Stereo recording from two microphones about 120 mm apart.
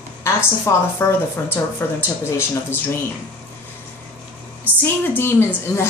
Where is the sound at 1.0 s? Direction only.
20° left (ahead or behind).